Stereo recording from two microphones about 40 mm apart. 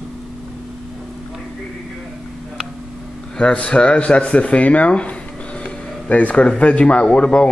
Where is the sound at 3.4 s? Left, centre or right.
Left.